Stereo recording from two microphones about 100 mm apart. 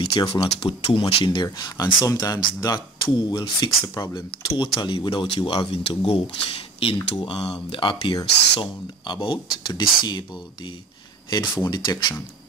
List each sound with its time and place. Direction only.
0.1 s speech: 60° left (ahead or behind)
2.0 s speech: 35° left (ahead or behind)
4.6 s speech: 55° left (ahead or behind)
5.7 s speech: 80° left
6.8 s speech: 65° left (ahead or behind); by 12.2 s 45° left (ahead or behind)